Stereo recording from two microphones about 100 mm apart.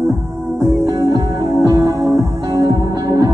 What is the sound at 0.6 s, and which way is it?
Music, 35° right (ahead or behind).